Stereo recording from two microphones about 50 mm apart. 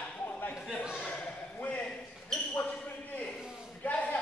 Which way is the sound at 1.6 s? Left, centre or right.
Left.